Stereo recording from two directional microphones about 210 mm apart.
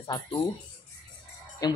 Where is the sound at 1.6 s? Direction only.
20° left (ahead or behind).